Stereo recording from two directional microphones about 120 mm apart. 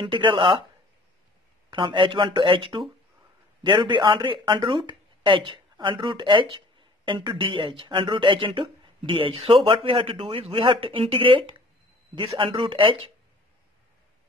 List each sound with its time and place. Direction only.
0.0 s speech: 45° right (ahead or behind)
1.7 s speech: 40° right (ahead or behind)